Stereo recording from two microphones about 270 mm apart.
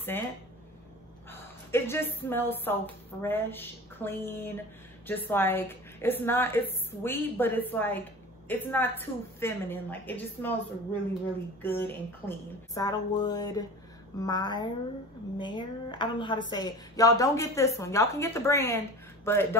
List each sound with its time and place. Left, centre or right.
0.1 s a woman's voice: centre
1.3 s a woman's voice: centre